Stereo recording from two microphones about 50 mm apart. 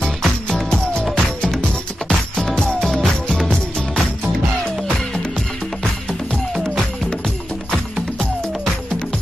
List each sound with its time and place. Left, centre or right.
0.0 s music: centre
0.7 s music: centre